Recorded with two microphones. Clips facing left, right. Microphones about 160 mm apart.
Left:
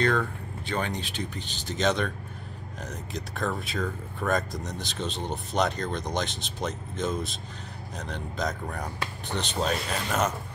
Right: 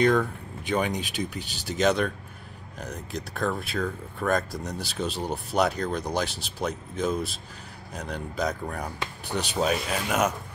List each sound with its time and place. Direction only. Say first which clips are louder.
0.0 s speech: right 4 dB; 15° right (ahead or behind)